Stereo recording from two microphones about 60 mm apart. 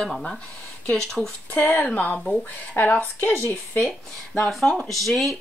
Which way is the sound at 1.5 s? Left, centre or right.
Left.